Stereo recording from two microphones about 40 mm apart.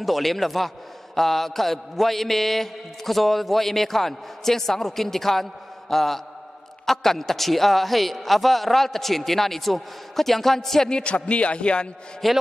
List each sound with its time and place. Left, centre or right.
0.0 s mantra: centre
10.9 s a man's voice: left
12.2 s mantra: centre